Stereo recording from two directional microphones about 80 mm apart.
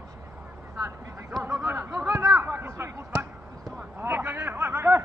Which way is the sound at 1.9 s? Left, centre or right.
Centre.